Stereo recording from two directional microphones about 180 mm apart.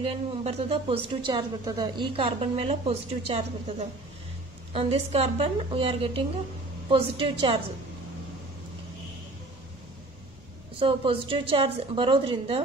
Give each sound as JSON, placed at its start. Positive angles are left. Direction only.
{"t": 0.0, "sound": "speech", "side_deg": -35}
{"t": 4.7, "sound": "a woman's voice", "side_deg": -35}
{"t": 10.8, "sound": "speech", "side_deg": -30}